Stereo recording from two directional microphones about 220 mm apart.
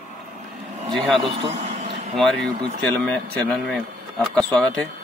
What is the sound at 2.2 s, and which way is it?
Speech, centre (ahead or behind).